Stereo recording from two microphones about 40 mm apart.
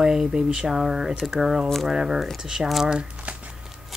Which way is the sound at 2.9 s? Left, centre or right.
Right.